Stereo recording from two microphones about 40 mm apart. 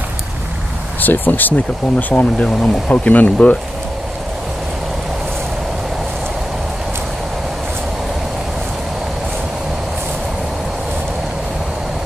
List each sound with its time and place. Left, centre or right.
1.0 s speech: left
2.3 s speech: left